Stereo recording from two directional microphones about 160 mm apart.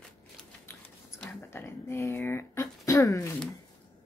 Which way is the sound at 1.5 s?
15° left (ahead or behind).